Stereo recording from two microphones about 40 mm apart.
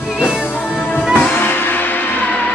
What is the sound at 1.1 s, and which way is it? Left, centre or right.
Music, left.